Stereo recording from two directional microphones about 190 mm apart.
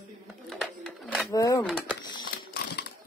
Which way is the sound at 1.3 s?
15° left (ahead or behind).